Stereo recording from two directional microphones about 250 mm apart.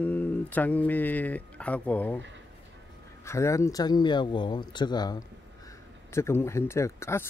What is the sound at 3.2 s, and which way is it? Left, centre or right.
Speech, centre.